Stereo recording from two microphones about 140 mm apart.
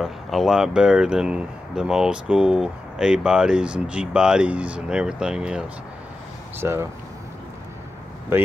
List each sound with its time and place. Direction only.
0.0 s speech: centre (ahead or behind)
6.6 s speech: 20° right (ahead or behind)
8.3 s speech: 15° right (ahead or behind)